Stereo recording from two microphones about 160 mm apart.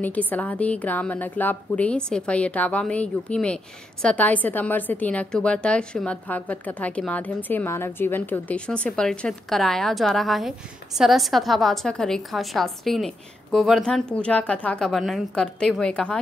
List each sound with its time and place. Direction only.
0.0 s a woman's voice: 10° left (ahead or behind)